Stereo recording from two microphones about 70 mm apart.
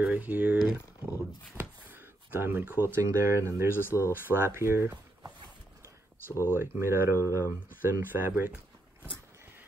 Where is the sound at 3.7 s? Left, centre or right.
Left.